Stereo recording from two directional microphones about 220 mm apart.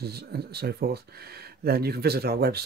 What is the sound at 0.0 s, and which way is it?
Speech, 45° right (ahead or behind).